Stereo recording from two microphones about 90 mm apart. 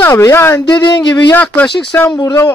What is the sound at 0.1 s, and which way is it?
Speech, 30° left (ahead or behind).